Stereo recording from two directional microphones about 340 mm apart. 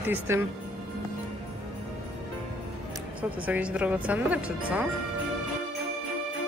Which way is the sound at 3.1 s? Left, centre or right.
Centre.